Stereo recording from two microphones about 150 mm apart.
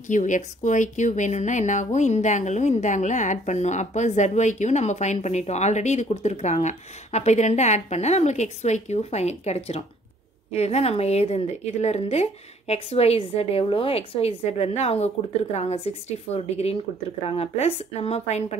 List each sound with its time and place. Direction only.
0.1 s a woman's voice: 55° left (ahead or behind)